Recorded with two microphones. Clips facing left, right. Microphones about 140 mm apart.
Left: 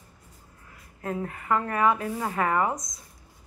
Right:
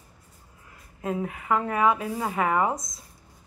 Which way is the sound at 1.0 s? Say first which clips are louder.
Right 2 dB; 15° right (ahead or behind).